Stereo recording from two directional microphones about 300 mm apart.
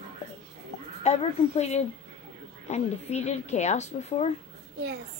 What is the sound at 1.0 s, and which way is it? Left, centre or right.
Speech, left.